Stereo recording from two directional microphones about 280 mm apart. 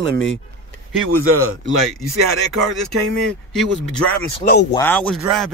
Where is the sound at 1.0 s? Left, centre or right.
Right.